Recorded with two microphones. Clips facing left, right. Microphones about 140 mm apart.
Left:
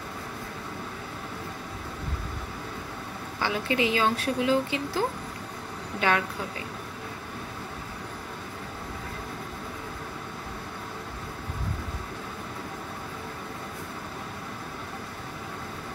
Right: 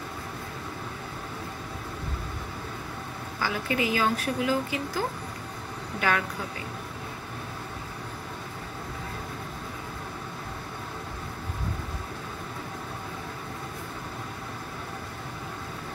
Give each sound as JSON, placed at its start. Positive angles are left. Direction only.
{"t": 3.3, "sound": "a woman's voice", "side_deg": 20}